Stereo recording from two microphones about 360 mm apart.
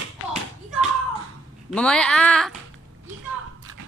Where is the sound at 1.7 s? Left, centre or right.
Centre.